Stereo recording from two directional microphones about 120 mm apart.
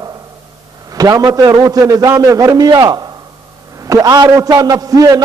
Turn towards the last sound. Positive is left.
turn(degrees=-30)  # may be behind; listen again after turning